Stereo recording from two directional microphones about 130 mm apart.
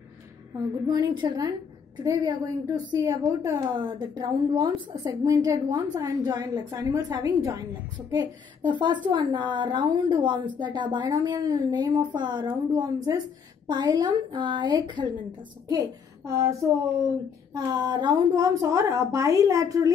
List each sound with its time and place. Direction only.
0.8 s a woman's voice: 30° right (ahead or behind)
15.7 s a woman's voice: 25° right (ahead or behind)